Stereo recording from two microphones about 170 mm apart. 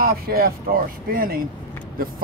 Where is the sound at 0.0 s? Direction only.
60° right (ahead or behind).